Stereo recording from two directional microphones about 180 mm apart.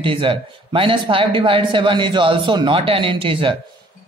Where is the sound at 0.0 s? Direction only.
30° right (ahead or behind).